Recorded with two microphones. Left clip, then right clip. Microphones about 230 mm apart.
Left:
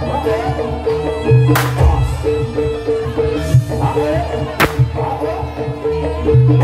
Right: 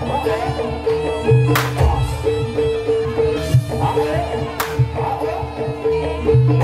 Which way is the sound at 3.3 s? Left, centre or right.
Right.